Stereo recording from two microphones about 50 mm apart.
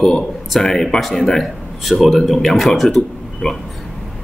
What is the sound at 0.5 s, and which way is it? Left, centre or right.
Speech, centre.